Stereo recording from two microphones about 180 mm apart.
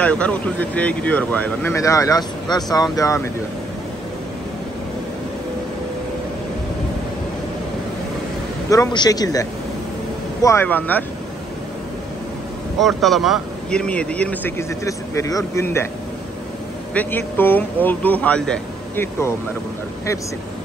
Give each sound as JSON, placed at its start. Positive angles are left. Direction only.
{"t": 0.0, "sound": "speech", "side_deg": 5}
{"t": 8.6, "sound": "a man's voice", "side_deg": 20}
{"t": 12.7, "sound": "speech", "side_deg": 0}
{"t": 16.9, "sound": "speech", "side_deg": 10}